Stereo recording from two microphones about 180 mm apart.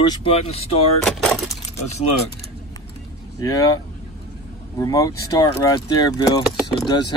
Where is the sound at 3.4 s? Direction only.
20° left (ahead or behind).